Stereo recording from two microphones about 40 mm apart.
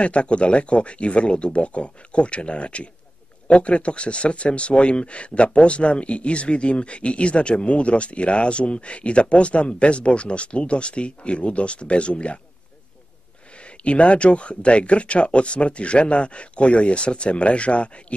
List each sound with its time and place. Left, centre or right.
0.0 s speech: left
13.6 s speech: left